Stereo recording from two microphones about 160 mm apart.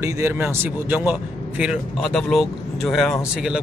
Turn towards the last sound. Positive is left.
turn(degrees=-5)  # may be behind; listen again after turning